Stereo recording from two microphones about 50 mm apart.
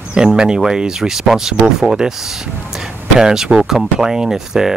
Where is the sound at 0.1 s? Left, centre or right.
Centre.